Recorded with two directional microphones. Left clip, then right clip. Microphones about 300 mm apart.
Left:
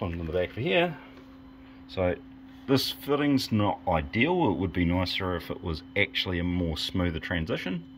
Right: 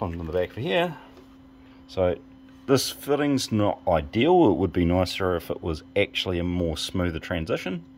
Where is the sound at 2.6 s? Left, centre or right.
Centre.